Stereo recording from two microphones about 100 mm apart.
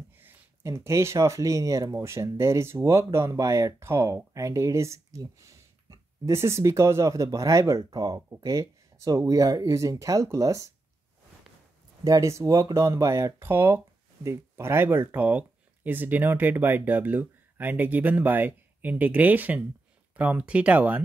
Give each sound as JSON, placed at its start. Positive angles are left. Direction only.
{"t": 0.2, "sound": "speech", "side_deg": -20}
{"t": 12.0, "sound": "speech", "side_deg": -35}